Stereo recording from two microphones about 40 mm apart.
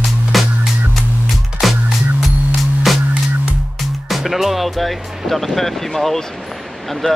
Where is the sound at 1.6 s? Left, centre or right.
Centre.